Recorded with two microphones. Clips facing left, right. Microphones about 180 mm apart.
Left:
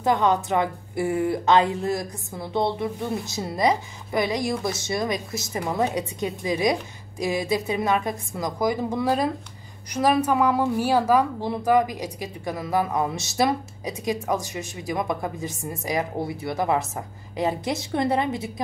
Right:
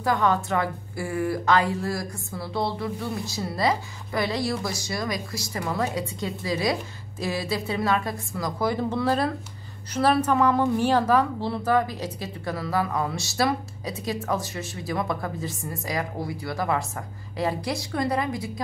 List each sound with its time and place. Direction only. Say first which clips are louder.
0.0 s a woman's voice: left 2 dB; 20° left (ahead or behind)